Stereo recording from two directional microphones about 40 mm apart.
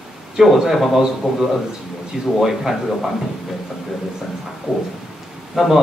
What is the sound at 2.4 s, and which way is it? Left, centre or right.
Speech, centre.